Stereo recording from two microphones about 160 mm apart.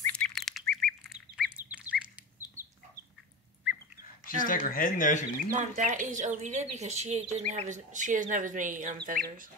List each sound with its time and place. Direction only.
0.0 s squawk: 5° left (ahead or behind)
4.4 s speech: 60° left (ahead or behind)
5.6 s speech: 50° right (ahead or behind)